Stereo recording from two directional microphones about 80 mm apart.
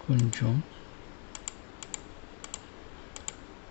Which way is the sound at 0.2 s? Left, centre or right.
Centre.